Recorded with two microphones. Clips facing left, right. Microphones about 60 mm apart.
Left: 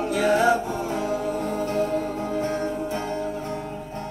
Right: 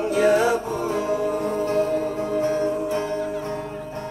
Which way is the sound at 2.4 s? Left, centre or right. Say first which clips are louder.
Right 6 dB; left.